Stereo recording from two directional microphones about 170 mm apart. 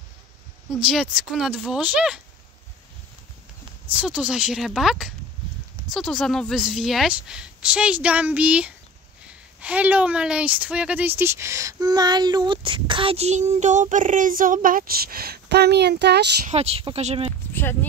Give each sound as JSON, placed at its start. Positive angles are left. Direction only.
{"t": 0.8, "sound": "a woman's voice", "side_deg": -5}
{"t": 3.9, "sound": "a woman's voice", "side_deg": -5}
{"t": 16.4, "sound": "speech", "side_deg": -40}
{"t": 17.5, "sound": "a sound", "side_deg": 10}